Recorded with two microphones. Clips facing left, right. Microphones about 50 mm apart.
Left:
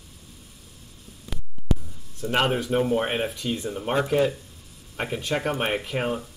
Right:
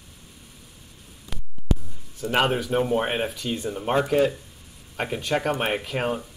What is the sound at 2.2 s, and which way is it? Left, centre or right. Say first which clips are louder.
Speech: right 1 dB; centre.